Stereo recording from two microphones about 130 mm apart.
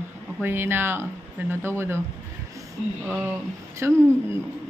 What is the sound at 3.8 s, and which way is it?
Speech, 20° right (ahead or behind).